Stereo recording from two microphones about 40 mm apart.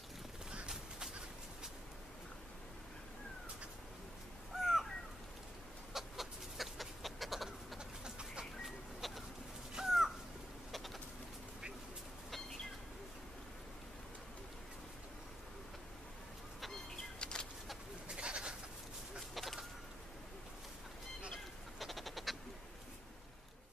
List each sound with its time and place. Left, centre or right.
4.6 s crow: centre
5.9 s chicken: centre
8.0 s bird: right
8.6 s bird: centre
9.8 s crow: centre
10.7 s bird: centre
17.2 s a sound: centre
18.0 s bird: right
19.1 s a sound: centre
21.7 s a sound: centre